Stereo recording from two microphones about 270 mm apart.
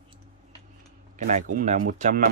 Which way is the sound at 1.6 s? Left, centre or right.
Right.